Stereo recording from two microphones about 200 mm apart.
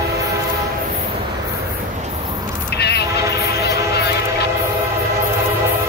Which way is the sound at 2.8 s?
55° left (ahead or behind).